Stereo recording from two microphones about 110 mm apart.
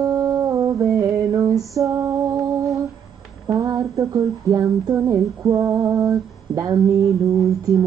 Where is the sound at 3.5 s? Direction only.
30° right (ahead or behind).